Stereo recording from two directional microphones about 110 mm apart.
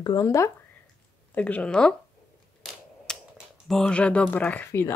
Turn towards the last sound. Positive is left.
turn(degrees=20)  # may be behind; listen again after turning